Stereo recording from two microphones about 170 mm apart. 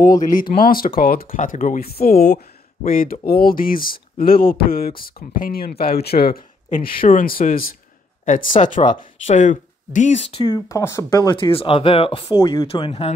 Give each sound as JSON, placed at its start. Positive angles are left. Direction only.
{"t": 0.0, "sound": "speech", "side_deg": 50}
{"t": 2.3, "sound": "speech", "side_deg": 50}
{"t": 10.3, "sound": "speech", "side_deg": 30}
{"t": 10.7, "sound": "speech", "side_deg": 15}
{"t": 12.4, "sound": "speech", "side_deg": 20}
{"t": 12.6, "sound": "speech", "side_deg": 35}